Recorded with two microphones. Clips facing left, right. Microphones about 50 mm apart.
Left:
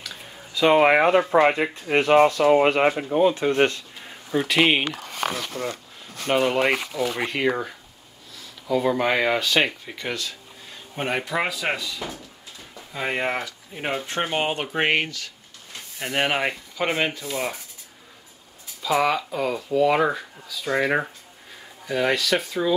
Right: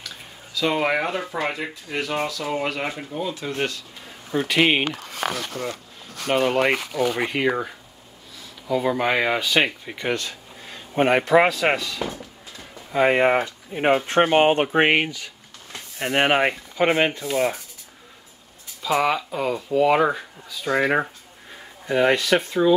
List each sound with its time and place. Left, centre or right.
0.6 s speech: left
4.3 s speech: centre
5.5 s speech: left
6.2 s speech: centre
6.5 s speech: centre
11.0 s speech: right
12.0 s a sound: right
12.9 s speech: right
18.8 s speech: centre